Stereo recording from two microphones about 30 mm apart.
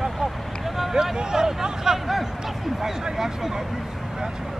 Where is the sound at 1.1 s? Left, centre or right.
Right.